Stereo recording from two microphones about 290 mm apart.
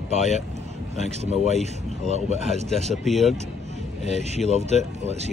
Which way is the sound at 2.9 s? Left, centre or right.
Centre.